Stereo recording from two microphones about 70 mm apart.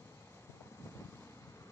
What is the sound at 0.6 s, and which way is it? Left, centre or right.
Vehicle, left.